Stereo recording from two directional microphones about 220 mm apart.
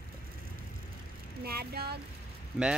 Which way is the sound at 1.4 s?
45° right (ahead or behind).